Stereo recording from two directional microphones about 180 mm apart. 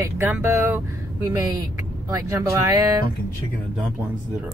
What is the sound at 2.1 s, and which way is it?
Speech, 20° right (ahead or behind).